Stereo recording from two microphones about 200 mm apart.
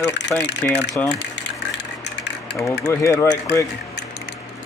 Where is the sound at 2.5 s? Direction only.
15° left (ahead or behind).